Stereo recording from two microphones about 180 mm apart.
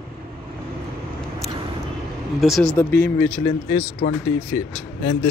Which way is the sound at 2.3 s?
Centre (ahead or behind).